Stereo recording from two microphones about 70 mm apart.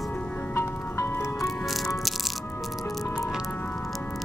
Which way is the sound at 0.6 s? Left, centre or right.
Left.